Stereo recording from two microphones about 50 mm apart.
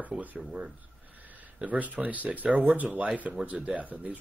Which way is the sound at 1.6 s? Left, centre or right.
Right.